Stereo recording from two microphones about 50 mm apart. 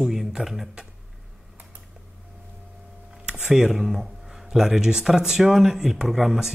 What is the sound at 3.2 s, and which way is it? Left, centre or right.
Speech, centre.